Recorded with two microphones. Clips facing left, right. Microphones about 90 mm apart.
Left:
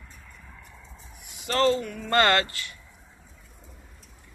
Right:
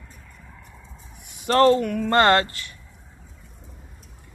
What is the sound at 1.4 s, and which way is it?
Speech, 45° right (ahead or behind).